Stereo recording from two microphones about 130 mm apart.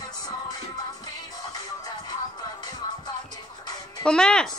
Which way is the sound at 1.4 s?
30° left (ahead or behind).